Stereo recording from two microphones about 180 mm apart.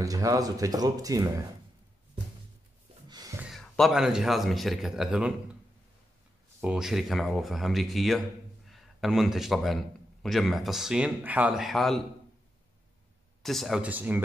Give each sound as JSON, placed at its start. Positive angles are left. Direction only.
{"t": 0.0, "sound": "speech", "side_deg": -20}
{"t": 3.1, "sound": "a sound", "side_deg": -20}
{"t": 3.3, "sound": "speech", "side_deg": 0}
{"t": 6.6, "sound": "a man's voice", "side_deg": 0}
{"t": 13.4, "sound": "speech", "side_deg": 0}